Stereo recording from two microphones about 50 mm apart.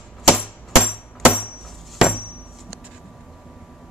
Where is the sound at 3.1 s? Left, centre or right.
Centre.